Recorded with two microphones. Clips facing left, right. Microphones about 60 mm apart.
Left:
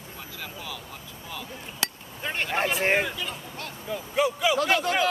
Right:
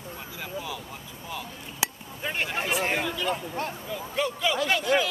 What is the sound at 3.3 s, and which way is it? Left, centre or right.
Speech, right.